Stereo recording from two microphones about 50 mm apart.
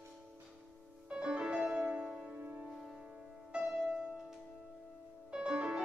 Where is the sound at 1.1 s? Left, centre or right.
Centre.